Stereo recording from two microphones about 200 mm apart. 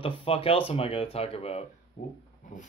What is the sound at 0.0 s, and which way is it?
Speech, 25° left (ahead or behind).